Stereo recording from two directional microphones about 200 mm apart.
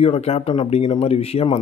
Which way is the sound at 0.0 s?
30° left (ahead or behind).